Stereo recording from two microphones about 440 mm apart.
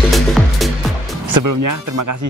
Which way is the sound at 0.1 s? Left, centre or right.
Centre.